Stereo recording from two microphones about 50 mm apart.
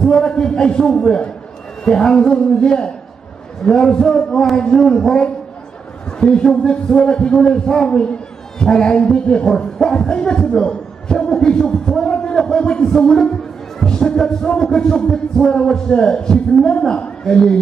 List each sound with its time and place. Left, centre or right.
0.0 s music: centre
6.0 s a man's voice: centre
8.5 s music: centre